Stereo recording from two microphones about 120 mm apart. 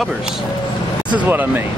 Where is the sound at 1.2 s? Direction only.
15° right (ahead or behind).